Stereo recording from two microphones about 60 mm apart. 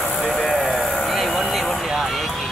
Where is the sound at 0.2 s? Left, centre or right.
Centre.